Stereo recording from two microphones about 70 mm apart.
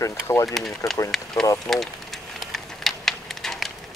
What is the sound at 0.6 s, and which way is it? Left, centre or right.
Speech, centre.